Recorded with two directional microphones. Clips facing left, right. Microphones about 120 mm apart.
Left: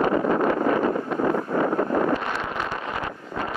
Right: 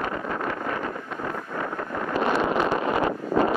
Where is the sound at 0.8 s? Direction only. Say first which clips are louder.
Left 8 dB; 45° left (ahead or behind).